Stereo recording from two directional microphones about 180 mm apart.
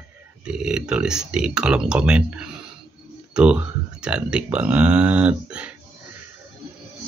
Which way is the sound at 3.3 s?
5° right (ahead or behind).